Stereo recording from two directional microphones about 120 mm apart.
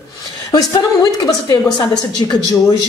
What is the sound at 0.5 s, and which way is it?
A woman's voice, 35° left (ahead or behind).